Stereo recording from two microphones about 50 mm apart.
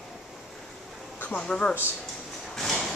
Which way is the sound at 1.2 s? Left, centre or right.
Left.